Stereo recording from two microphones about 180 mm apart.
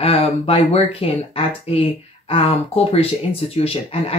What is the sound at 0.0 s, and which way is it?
Speech, 35° left (ahead or behind).